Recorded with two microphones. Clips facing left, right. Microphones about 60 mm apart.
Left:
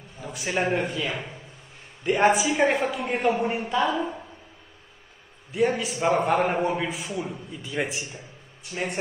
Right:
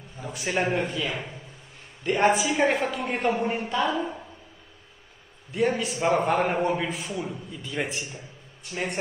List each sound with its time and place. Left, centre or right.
0.2 s a man's voice: centre
1.0 s speech: left
2.0 s a man's voice: centre
5.5 s a man's voice: centre
7.2 s a man's voice: left; by 8.9 s centre